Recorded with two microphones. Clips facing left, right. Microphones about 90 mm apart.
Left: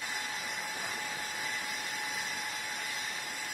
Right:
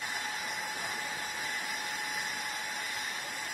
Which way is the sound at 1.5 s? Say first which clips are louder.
Right 1 dB; 55° right (ahead or behind).